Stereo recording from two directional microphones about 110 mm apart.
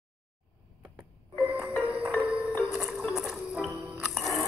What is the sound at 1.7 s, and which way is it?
Music, 25° left (ahead or behind).